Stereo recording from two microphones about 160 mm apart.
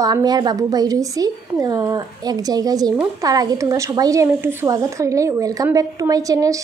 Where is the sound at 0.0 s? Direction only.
25° right (ahead or behind).